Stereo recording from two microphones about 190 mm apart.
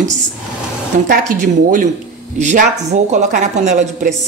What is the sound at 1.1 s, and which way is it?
A woman's voice, 45° right (ahead or behind).